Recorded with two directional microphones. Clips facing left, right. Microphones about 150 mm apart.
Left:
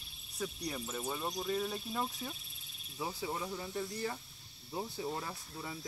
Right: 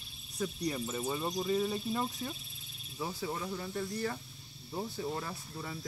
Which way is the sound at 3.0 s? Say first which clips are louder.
Right 1 dB; 15° left (ahead or behind).